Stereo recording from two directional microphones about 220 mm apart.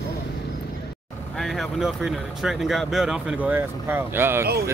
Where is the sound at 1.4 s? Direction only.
Centre (ahead or behind).